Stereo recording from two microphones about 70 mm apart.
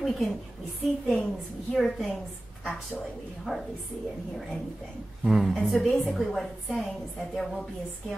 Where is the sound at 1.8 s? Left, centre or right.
Centre.